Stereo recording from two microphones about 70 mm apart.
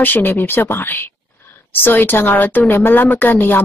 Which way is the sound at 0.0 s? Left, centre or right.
Left.